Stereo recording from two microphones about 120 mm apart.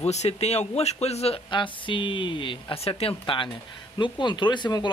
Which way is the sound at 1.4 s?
45° left (ahead or behind).